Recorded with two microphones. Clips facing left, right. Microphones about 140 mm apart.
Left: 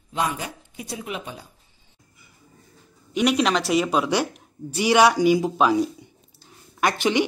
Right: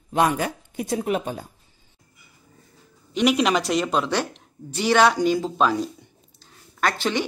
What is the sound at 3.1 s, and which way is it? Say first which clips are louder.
Speech: right 1 dB; centre (ahead or behind).